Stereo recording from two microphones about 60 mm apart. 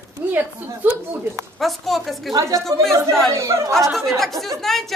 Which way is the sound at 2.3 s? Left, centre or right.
Right.